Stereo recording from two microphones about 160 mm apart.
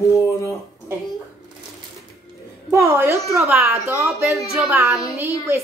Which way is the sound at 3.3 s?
Centre (ahead or behind).